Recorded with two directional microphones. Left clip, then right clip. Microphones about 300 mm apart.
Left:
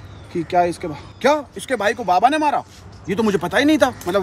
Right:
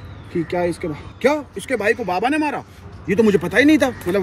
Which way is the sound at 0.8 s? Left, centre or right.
Centre.